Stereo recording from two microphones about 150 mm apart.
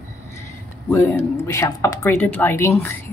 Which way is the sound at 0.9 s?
15° left (ahead or behind).